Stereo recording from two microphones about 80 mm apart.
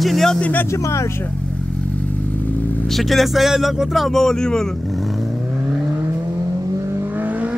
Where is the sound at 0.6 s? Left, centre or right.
Left.